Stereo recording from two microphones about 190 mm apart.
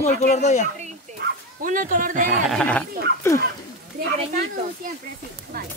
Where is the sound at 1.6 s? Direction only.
45° right (ahead or behind).